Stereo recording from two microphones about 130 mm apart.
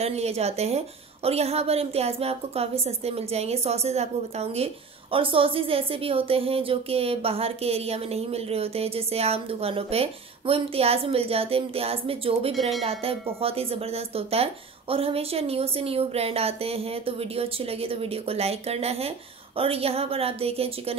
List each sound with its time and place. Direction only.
0.0 s speech: 55° right (ahead or behind)
5.1 s speech: 45° right (ahead or behind)